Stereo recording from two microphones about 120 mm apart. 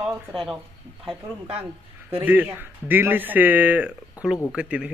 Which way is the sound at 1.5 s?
15° right (ahead or behind).